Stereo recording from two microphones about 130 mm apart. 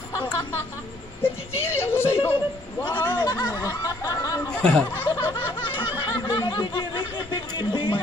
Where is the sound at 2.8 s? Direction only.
35° left (ahead or behind).